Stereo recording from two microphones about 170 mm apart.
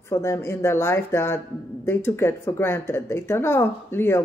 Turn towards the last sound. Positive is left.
turn(degrees=15)  # may be behind; listen again after turning